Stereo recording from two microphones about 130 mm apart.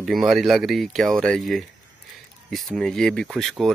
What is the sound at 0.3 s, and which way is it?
Speech, centre (ahead or behind).